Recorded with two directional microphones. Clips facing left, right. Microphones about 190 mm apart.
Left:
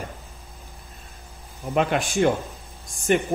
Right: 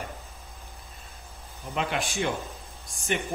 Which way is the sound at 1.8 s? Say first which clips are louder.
Left 7 dB; 50° left (ahead or behind).